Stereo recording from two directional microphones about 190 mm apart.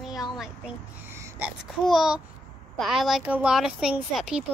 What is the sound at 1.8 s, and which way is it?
A woman's voice, centre (ahead or behind).